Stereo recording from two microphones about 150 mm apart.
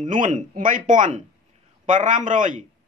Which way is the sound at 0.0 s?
60° right (ahead or behind).